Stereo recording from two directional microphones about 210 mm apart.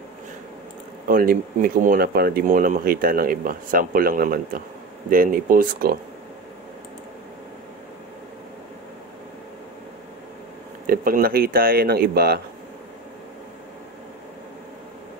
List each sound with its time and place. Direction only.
1.0 s speech: 45° right (ahead or behind)
10.9 s speech: 45° right (ahead or behind)